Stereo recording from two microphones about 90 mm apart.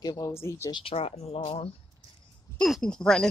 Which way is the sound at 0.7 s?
75° left (ahead or behind).